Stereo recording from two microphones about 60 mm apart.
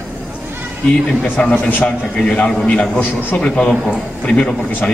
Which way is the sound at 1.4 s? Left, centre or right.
Centre.